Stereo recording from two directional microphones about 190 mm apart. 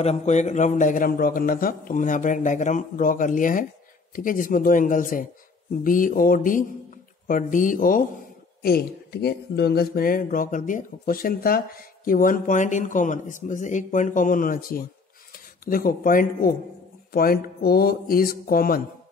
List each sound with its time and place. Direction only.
0.0 s speech: 35° left (ahead or behind)